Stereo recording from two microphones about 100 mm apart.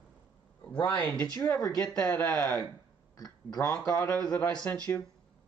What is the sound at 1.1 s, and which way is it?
A man's voice, 10° left (ahead or behind).